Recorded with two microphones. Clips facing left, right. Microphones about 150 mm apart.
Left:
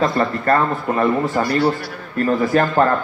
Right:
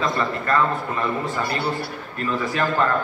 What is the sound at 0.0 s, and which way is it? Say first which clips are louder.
A man's voice: left 5 dB; 45° left (ahead or behind).